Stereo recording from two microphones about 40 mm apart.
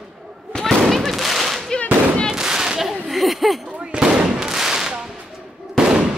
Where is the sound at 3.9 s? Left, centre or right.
Centre.